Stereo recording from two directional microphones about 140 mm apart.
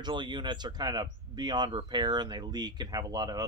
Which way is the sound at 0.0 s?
30° right (ahead or behind).